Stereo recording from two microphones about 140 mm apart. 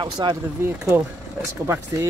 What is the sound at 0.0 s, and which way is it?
Speech, 35° right (ahead or behind).